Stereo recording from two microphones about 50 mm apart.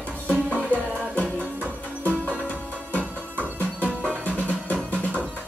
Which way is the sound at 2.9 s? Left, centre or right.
Left.